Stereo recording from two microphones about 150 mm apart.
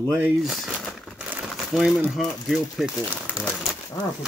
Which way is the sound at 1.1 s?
10° right (ahead or behind).